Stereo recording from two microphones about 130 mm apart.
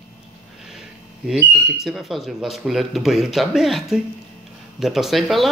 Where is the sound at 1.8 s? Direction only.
Centre (ahead or behind).